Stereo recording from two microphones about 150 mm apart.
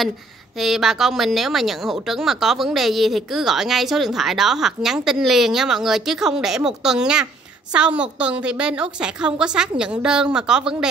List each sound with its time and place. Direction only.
0.6 s speech: centre (ahead or behind)